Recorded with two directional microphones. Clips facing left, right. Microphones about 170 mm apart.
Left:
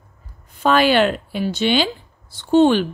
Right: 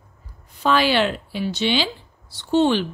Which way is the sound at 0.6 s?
50° left (ahead or behind).